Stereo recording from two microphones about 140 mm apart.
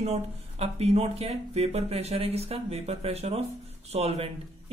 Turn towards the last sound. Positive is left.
turn(degrees=-45)  # may be behind; listen again after turning